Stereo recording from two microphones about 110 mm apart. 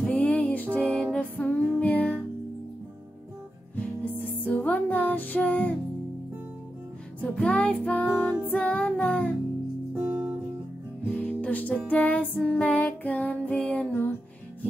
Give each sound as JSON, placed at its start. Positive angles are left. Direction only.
{"t": 0.0, "sound": "music", "side_deg": 15}
{"t": 4.0, "sound": "music", "side_deg": 15}
{"t": 7.2, "sound": "music", "side_deg": 10}
{"t": 9.9, "sound": "music", "side_deg": -20}
{"t": 11.1, "sound": "music", "side_deg": 10}